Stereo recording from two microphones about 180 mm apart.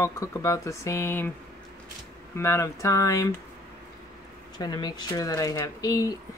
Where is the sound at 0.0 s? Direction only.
15° left (ahead or behind).